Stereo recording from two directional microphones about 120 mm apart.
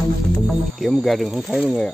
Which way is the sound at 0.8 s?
Centre (ahead or behind).